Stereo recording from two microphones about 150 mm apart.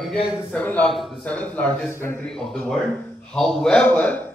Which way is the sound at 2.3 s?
5° left (ahead or behind).